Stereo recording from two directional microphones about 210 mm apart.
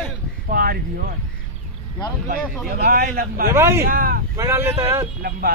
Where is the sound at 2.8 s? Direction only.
45° right (ahead or behind).